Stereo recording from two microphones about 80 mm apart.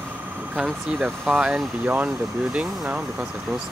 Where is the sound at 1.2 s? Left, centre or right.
Centre.